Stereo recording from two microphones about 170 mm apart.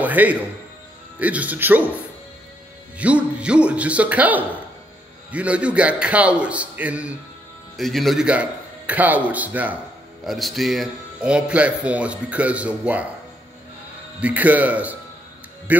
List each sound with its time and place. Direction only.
0.0 s music: 10° right (ahead or behind)
1.2 s a man's voice: 10° right (ahead or behind)
3.0 s a man's voice: 10° right (ahead or behind)
14.2 s a man's voice: 10° right (ahead or behind)